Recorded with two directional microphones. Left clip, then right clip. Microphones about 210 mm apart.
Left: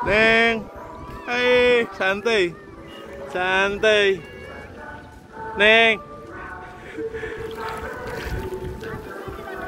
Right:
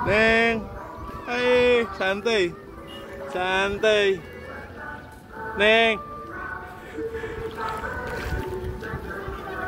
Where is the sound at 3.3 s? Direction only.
Centre (ahead or behind).